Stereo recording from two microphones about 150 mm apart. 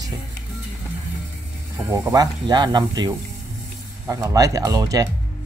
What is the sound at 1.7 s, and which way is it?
Speech, 20° right (ahead or behind).